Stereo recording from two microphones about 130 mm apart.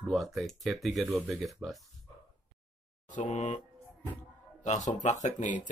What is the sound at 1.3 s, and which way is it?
Speech, centre (ahead or behind).